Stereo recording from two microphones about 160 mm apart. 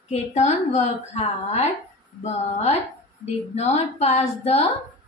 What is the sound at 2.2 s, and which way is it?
A woman's voice, 45° left (ahead or behind).